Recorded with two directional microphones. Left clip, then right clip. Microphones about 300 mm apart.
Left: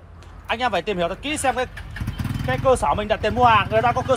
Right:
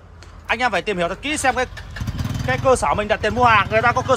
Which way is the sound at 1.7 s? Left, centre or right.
Right.